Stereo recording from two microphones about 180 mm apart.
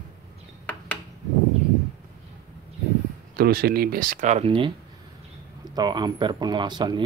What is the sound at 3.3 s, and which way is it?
Speech, 55° right (ahead or behind).